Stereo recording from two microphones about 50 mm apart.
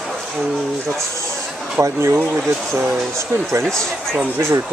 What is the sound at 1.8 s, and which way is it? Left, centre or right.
Speech, right.